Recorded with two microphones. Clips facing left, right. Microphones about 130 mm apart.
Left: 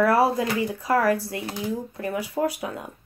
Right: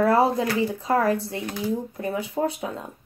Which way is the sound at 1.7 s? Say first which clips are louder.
Right 1 dB; 25° right (ahead or behind).